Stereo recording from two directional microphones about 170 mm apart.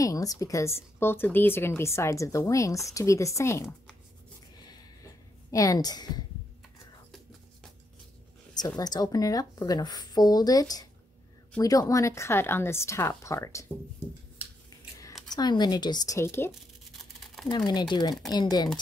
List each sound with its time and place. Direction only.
0.0 s speech: 20° left (ahead or behind)
5.5 s a woman's voice: 20° left (ahead or behind)
8.5 s a woman's voice: 25° left (ahead or behind)
15.3 s a woman's voice: 25° left (ahead or behind)
17.5 s a woman's voice: 25° left (ahead or behind)